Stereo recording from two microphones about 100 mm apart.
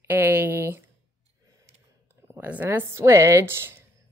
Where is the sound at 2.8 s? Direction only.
30° right (ahead or behind).